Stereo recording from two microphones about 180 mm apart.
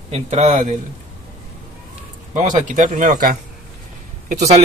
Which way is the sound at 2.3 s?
40° right (ahead or behind).